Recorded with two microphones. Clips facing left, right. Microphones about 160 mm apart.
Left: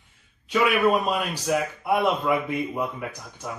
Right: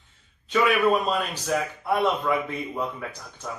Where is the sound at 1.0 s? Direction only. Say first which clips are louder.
Left 1 dB; 10° left (ahead or behind).